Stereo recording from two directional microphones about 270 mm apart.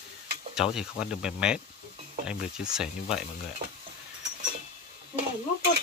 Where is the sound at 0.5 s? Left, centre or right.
Centre.